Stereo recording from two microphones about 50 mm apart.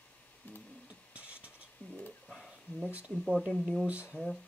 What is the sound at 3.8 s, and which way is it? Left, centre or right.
Speech, right.